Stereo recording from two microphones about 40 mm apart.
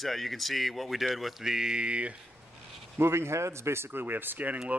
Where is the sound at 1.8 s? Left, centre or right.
Right.